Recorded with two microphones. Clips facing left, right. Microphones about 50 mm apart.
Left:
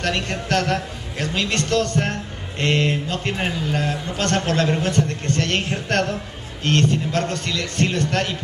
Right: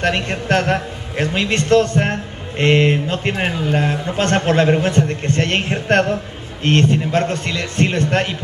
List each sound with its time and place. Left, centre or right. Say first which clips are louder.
0.0 s a man's voice: right 4 dB; right